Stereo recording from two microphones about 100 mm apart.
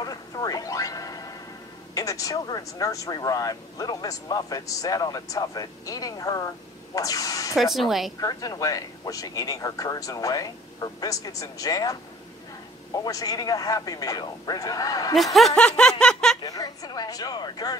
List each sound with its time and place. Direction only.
0.0 s music: 40° left (ahead or behind)
2.0 s speech: 35° left (ahead or behind)
7.5 s a woman's voice: centre (ahead or behind)
8.2 s speech: 35° left (ahead or behind)
15.1 s speech: centre (ahead or behind)
16.4 s speech: 40° left (ahead or behind)